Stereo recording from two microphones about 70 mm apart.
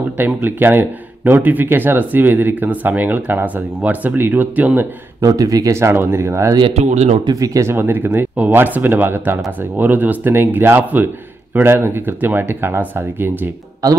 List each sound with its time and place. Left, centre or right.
0.2 s speech: right
5.2 s speech: right
5.8 s speech: right
7.3 s speech: right
7.6 s speech: right
13.8 s speech: right